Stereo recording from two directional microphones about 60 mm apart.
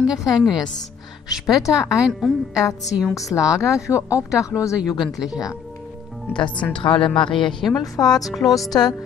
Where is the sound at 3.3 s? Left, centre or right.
Centre.